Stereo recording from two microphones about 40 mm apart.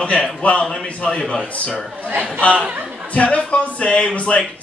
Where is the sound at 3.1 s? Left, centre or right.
Left.